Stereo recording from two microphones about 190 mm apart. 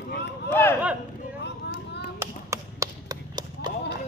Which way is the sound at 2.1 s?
15° right (ahead or behind).